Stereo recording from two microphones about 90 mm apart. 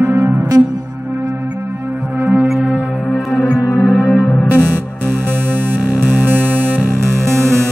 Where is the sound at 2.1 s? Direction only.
15° right (ahead or behind).